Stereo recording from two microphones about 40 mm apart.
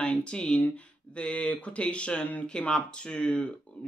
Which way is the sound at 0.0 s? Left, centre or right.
Left.